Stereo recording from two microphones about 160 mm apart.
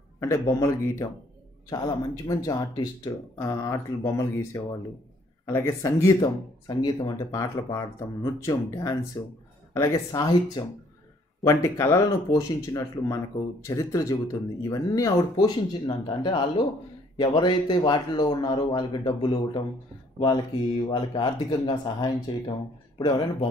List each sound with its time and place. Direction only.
0.2 s speech: 20° left (ahead or behind)